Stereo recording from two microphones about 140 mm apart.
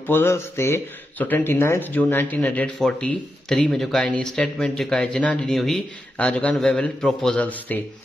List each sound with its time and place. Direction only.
0.0 s speech: 15° left (ahead or behind)